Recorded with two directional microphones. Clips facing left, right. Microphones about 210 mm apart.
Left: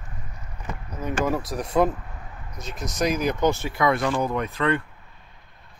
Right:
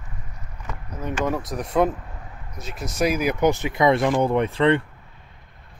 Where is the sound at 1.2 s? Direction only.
Centre (ahead or behind); by 4.8 s 25° right (ahead or behind).